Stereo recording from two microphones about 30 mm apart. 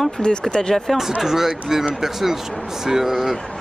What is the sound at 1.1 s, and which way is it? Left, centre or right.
Speech, centre.